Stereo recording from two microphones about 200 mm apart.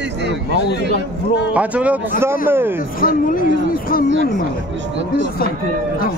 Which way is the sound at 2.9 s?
45° left (ahead or behind).